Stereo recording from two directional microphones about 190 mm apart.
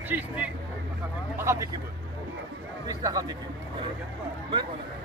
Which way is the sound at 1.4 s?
15° right (ahead or behind).